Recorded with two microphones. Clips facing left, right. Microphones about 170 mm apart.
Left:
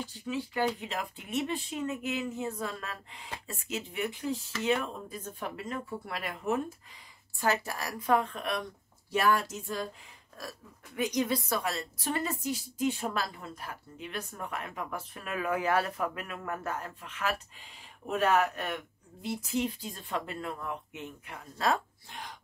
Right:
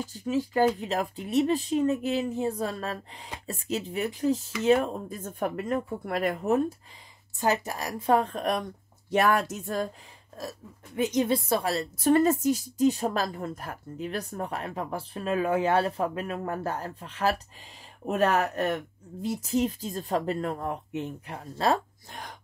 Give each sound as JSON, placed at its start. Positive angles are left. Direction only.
{"t": 0.2, "sound": "a woman's voice", "side_deg": -40}
{"t": 7.3, "sound": "a woman's voice", "side_deg": -20}
{"t": 8.2, "sound": "a woman's voice", "side_deg": -40}
{"t": 9.1, "sound": "speech", "side_deg": -60}
{"t": 11.0, "sound": "a woman's voice", "side_deg": -25}